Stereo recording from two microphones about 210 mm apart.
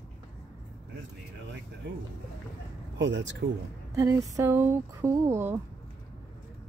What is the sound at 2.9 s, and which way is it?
Speech, 60° right (ahead or behind).